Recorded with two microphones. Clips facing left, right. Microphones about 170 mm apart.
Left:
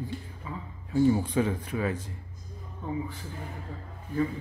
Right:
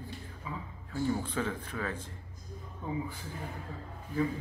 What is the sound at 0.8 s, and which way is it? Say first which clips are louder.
Speech: left 9 dB; 15° left (ahead or behind).